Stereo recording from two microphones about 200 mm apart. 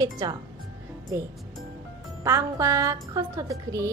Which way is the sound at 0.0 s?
20° right (ahead or behind).